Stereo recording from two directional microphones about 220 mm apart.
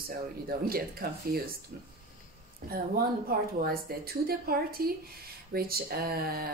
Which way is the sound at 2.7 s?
45° right (ahead or behind).